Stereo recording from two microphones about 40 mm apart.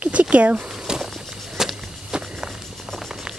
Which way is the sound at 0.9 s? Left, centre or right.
Centre.